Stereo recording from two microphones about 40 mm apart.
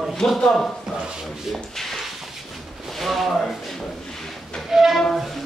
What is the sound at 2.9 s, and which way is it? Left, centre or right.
Speech, centre.